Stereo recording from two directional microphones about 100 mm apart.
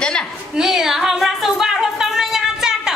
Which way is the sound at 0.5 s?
5° right (ahead or behind).